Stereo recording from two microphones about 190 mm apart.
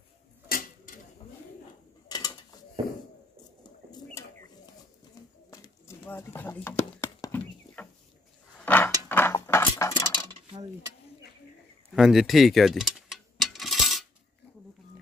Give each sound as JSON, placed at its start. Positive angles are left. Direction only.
{"t": 0.5, "sound": "tick-tock", "side_deg": 45}
{"t": 2.0, "sound": "mechanisms", "side_deg": 20}
{"t": 5.5, "sound": "a sound", "side_deg": 15}
{"t": 10.1, "sound": "dishes", "side_deg": -25}
{"t": 11.9, "sound": "mechanisms", "side_deg": 0}